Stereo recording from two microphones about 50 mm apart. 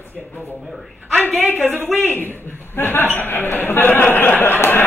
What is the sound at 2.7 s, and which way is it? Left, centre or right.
Speech, left.